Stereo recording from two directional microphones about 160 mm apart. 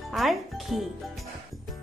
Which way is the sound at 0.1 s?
Centre (ahead or behind).